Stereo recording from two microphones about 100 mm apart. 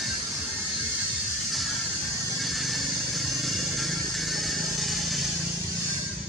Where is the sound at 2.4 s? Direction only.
Centre (ahead or behind).